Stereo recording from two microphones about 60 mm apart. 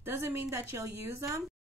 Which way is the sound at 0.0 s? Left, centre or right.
Right.